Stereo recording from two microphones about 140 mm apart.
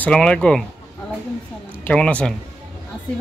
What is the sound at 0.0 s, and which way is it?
Speech, 5° left (ahead or behind).